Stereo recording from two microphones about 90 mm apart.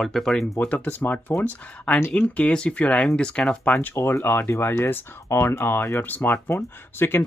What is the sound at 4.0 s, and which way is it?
Speech, 30° left (ahead or behind).